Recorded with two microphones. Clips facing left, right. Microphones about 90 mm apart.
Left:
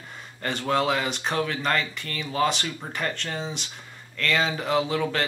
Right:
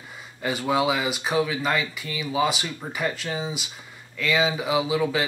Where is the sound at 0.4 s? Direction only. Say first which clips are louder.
Right 1 dB; 5° right (ahead or behind).